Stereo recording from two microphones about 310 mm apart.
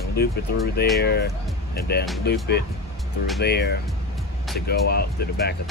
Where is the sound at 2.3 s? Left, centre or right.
Left.